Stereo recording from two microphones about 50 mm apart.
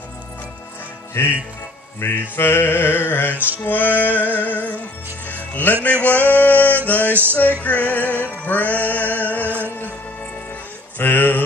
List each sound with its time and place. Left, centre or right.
1.2 s a sound: left
3.3 s music: right
3.6 s music: left
6.0 s male singing: left
6.9 s music: left
9.0 s music: right
11.0 s a sound: left